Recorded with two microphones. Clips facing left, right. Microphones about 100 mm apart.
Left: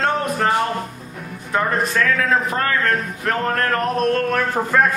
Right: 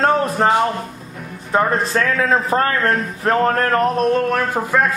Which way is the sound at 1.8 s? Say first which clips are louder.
Right 1 dB; 30° right (ahead or behind).